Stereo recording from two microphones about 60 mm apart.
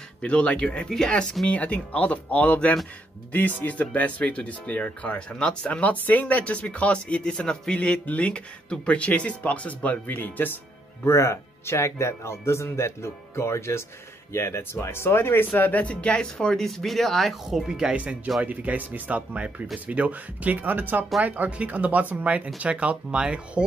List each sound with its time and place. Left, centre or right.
0.2 s speech: centre
1.5 s speech: left
10.1 s speech: left
11.1 s speech: left; by 17.6 s centre
17.6 s speech: centre